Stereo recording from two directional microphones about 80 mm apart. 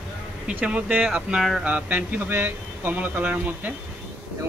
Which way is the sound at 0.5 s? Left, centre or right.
Centre.